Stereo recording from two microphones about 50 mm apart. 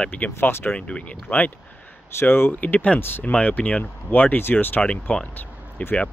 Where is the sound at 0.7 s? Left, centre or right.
Left.